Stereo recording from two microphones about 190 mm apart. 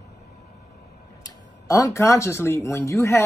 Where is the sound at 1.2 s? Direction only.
20° left (ahead or behind).